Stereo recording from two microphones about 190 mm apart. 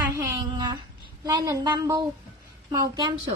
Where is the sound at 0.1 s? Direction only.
20° right (ahead or behind).